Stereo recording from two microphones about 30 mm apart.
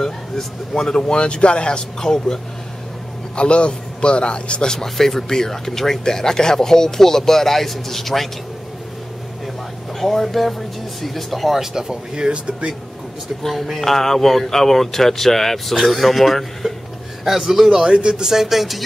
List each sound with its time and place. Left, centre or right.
0.0 s speech: centre; by 1.8 s left
2.0 s speech: left
3.3 s speech: left
4.7 s speech: centre
9.9 s speech: centre
11.6 s speech: right
12.3 s speech: right
13.5 s speech: centre
17.2 s a man's voice: centre; by 18.3 s right
18.3 s a man's voice: centre